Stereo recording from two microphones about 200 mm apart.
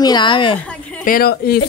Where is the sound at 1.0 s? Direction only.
45° left (ahead or behind).